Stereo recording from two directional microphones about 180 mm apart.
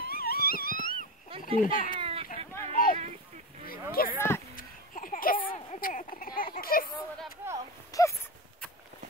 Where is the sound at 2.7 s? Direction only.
50° left (ahead or behind).